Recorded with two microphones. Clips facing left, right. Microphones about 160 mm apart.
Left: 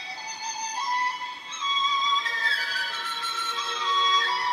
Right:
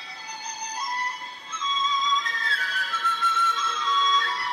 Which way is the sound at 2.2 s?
30° left (ahead or behind).